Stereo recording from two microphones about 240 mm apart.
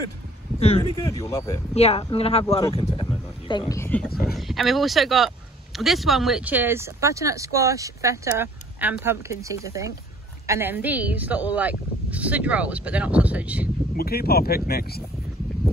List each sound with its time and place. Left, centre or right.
0.6 s speech: left
0.9 s speech: centre
1.8 s speech: left; by 4.1 s centre
4.1 s speech: left
4.4 s speech: centre
13.9 s speech: left